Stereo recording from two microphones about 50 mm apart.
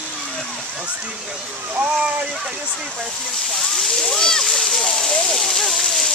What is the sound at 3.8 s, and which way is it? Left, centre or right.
Splash, centre.